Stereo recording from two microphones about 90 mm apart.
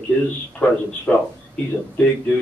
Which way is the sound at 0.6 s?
15° left (ahead or behind).